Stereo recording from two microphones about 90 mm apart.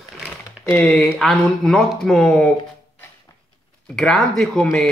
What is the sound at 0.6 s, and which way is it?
Speech, 20° left (ahead or behind).